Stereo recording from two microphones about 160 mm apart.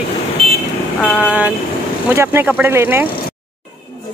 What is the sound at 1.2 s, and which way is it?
Speech, 10° right (ahead or behind).